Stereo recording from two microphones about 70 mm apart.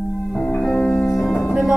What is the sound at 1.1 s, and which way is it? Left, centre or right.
Music, centre.